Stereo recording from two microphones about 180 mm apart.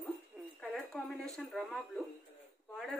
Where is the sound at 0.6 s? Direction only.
5° left (ahead or behind).